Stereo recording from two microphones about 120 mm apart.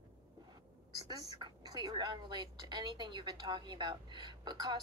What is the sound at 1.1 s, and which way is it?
A woman's voice, 35° right (ahead or behind).